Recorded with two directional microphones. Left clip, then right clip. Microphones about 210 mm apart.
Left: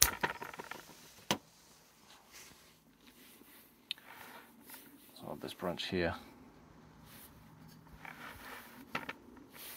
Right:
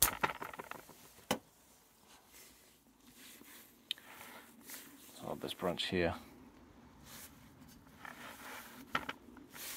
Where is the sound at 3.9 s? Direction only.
15° right (ahead or behind).